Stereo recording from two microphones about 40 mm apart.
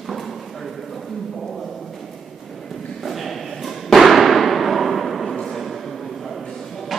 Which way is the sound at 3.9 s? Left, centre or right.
Centre.